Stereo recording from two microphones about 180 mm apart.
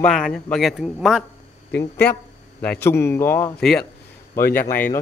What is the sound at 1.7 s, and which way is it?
Speech, 65° left (ahead or behind).